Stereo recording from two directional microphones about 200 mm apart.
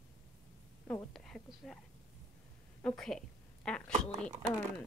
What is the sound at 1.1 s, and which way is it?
Speech, centre (ahead or behind).